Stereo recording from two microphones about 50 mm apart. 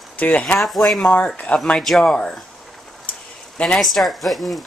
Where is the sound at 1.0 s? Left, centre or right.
Left.